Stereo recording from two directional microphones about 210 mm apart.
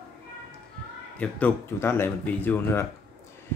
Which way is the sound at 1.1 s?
5° left (ahead or behind).